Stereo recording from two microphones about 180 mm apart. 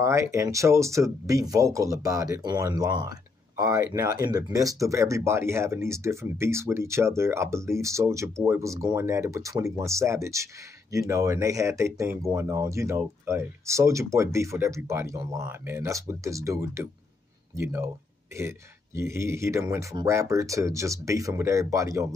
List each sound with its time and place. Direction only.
0.0 s speech: 15° right (ahead or behind)
18.9 s speech: 15° right (ahead or behind)